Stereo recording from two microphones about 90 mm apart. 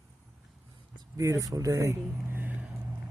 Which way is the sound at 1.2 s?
40° right (ahead or behind).